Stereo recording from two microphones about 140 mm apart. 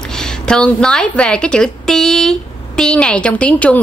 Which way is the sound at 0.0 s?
5° left (ahead or behind).